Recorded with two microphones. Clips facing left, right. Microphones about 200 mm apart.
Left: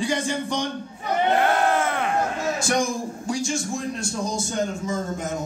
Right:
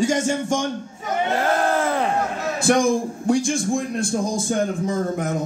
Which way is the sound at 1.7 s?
35° right (ahead or behind).